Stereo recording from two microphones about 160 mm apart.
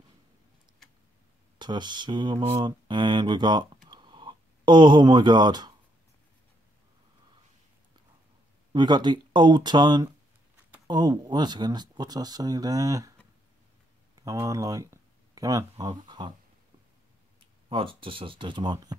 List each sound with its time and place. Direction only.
1.6 s speech: 30° right (ahead or behind)
8.7 s speech: 25° right (ahead or behind)
14.2 s speech: 20° right (ahead or behind)
17.4 s speech: 30° right (ahead or behind)